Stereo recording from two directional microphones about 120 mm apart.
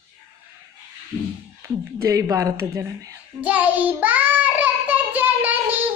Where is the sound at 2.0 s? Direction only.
25° right (ahead or behind).